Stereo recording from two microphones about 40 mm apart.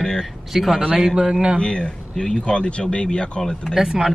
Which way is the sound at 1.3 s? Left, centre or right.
Right.